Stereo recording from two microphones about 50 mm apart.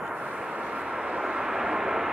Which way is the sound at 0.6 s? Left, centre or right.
Right.